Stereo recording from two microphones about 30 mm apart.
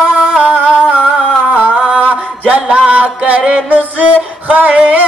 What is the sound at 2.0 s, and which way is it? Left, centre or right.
Music, right.